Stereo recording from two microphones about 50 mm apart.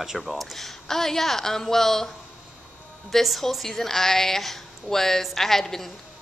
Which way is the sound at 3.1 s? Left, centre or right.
Centre.